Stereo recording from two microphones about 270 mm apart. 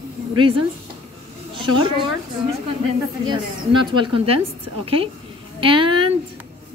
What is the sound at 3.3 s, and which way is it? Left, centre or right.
A woman's voice, centre.